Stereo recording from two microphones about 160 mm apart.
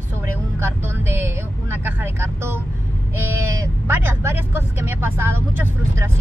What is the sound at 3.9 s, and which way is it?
Speech, 15° right (ahead or behind).